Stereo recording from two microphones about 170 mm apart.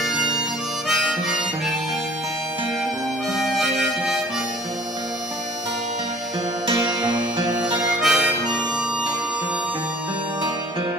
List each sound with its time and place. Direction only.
0.8 s harmonica: centre (ahead or behind)
3.3 s harmonica: centre (ahead or behind)
6.7 s music: 25° right (ahead or behind)
8.0 s harmonica: 5° right (ahead or behind)